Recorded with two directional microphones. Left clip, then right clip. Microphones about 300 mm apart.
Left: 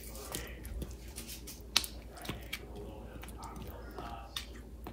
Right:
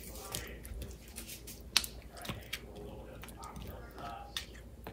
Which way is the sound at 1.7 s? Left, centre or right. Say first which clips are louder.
Even; centre.